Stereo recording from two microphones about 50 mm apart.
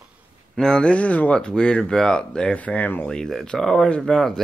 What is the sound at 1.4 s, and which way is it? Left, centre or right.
Speech, centre.